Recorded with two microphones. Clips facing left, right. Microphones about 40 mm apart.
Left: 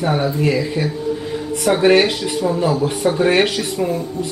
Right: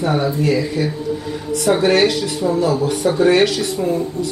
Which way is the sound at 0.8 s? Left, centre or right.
Left.